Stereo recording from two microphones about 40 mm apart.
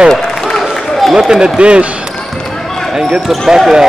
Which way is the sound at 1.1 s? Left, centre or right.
Centre.